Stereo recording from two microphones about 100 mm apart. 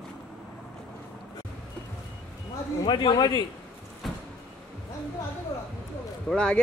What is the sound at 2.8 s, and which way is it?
Speech, 55° left (ahead or behind).